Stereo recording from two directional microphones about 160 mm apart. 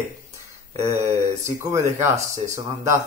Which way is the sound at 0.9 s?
15° right (ahead or behind).